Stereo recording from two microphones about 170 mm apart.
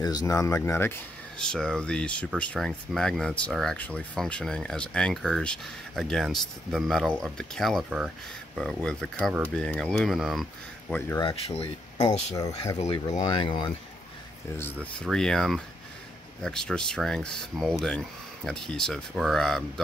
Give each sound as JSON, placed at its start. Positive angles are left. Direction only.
{"t": 0.0, "sound": "speech", "side_deg": 20}
{"t": 10.9, "sound": "speech", "side_deg": 15}
{"t": 11.2, "sound": "speech", "side_deg": 35}
{"t": 12.4, "sound": "speech", "side_deg": 20}
{"t": 12.8, "sound": "speech", "side_deg": 40}
{"t": 13.2, "sound": "speech", "side_deg": 25}
{"t": 14.6, "sound": "speech", "side_deg": 5}